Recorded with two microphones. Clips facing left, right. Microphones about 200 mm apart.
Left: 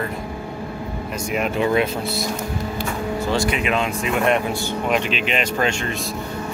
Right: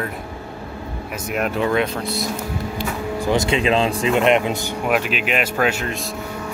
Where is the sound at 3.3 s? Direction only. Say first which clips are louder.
Right 4 dB; 25° right (ahead or behind).